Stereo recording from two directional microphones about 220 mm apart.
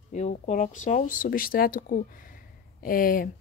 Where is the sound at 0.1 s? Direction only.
35° left (ahead or behind).